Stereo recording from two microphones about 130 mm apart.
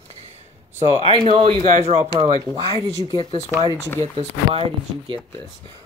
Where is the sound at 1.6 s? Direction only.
60° right (ahead or behind).